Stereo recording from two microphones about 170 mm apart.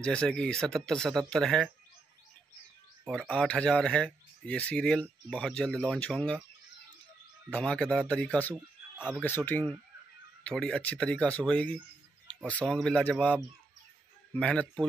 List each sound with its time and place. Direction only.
0.0 s speech: 5° left (ahead or behind)
3.1 s speech: 5° left (ahead or behind)
7.5 s a man's voice: 5° left (ahead or behind)